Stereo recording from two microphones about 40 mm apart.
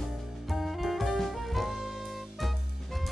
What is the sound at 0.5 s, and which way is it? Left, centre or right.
Music, centre.